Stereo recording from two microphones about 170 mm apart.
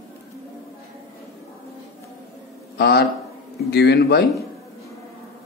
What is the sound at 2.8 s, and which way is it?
Speech, 70° left (ahead or behind).